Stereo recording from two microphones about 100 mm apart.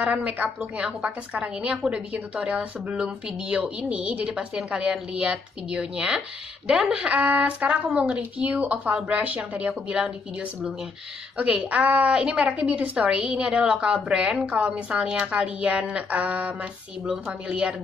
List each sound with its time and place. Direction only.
0.0 s a woman's voice: 10° right (ahead or behind)